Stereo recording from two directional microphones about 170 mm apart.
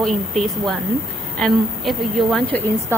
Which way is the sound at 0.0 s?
Centre (ahead or behind).